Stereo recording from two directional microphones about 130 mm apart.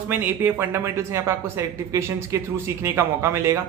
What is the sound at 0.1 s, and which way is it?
Speech, 15° right (ahead or behind).